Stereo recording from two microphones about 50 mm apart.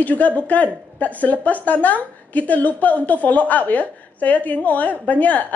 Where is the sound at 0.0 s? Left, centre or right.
Left.